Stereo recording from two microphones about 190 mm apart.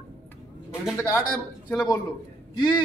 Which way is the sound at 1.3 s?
5° left (ahead or behind).